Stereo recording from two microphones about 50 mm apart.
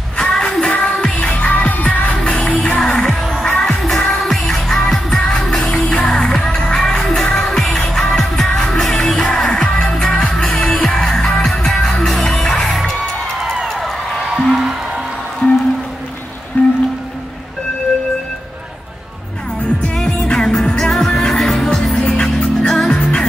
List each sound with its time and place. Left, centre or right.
0.2 s music: centre
1.2 s music: left
2.1 s music: centre
13.7 s a sound: centre
14.3 s music: centre
15.4 s music: left
20.0 s music: centre
22.2 s music: centre